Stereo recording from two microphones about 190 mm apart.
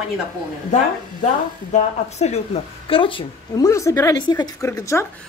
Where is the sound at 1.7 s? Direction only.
35° left (ahead or behind); by 5.1 s 15° left (ahead or behind).